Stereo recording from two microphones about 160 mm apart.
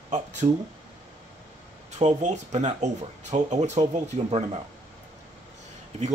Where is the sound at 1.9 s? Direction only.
45° right (ahead or behind).